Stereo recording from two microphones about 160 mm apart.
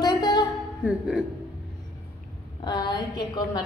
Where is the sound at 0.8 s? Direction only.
Centre (ahead or behind).